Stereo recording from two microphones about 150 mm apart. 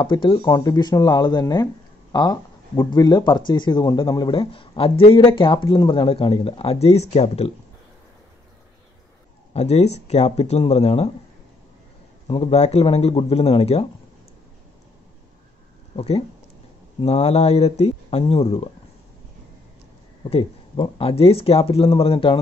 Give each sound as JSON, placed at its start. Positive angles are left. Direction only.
{"t": 0.0, "sound": "speech", "side_deg": 30}
{"t": 9.5, "sound": "speech", "side_deg": 45}
{"t": 12.3, "sound": "speech", "side_deg": 40}
{"t": 16.0, "sound": "speech", "side_deg": 40}
{"t": 20.7, "sound": "speech", "side_deg": 35}